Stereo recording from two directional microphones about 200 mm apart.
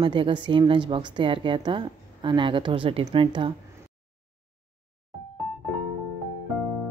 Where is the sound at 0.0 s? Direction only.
25° right (ahead or behind).